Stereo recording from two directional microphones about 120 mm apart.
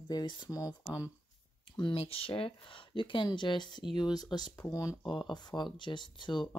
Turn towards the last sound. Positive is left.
turn(degrees=40)  # may be behind; listen again after turning